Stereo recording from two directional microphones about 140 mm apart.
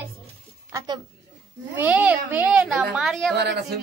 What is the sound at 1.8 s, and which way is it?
A child's voice, 10° right (ahead or behind).